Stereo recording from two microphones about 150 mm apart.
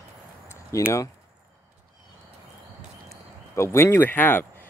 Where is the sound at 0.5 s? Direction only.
20° left (ahead or behind).